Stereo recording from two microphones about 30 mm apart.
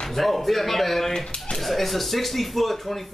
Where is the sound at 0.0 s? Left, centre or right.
Centre.